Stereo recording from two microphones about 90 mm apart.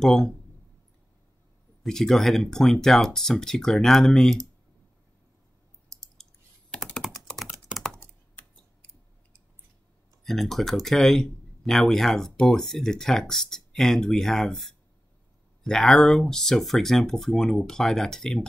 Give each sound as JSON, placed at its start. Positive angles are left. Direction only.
{"t": 0.0, "sound": "speech", "side_deg": 5}
{"t": 1.8, "sound": "speech", "side_deg": 5}
{"t": 6.7, "sound": "computer keyboard", "side_deg": 5}
{"t": 7.5, "sound": "computer keyboard", "side_deg": -5}
{"t": 8.0, "sound": "scissors", "side_deg": 20}
{"t": 10.2, "sound": "speech", "side_deg": 0}